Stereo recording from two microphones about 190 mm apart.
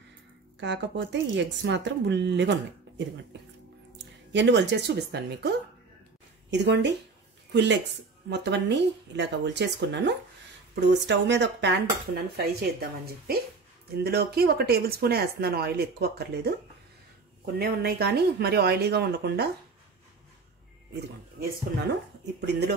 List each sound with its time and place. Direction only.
0.6 s speech: 65° right (ahead or behind)
4.3 s speech: 70° right (ahead or behind)
6.5 s speech: 65° right (ahead or behind)
17.6 s speech: 55° right (ahead or behind)
22.5 s speech: 60° right (ahead or behind)